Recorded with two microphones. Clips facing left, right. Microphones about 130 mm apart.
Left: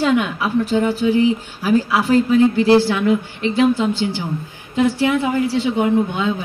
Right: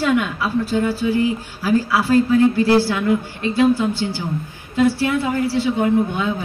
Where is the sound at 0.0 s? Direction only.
20° left (ahead or behind).